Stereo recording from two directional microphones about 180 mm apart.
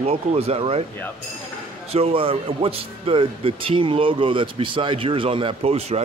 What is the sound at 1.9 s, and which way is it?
Speech, 30° right (ahead or behind).